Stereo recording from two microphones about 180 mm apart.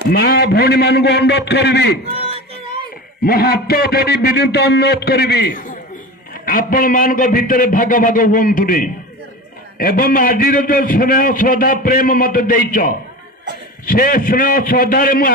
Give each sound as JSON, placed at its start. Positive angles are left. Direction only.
{"t": 0.1, "sound": "a man's voice", "side_deg": 60}
{"t": 2.2, "sound": "music", "side_deg": -35}
{"t": 3.3, "sound": "a man's voice", "side_deg": 55}